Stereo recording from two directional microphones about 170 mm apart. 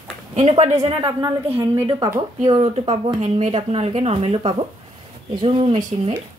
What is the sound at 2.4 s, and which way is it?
A woman's voice, 30° right (ahead or behind).